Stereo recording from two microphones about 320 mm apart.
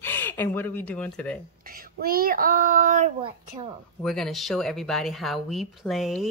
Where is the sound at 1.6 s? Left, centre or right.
Right.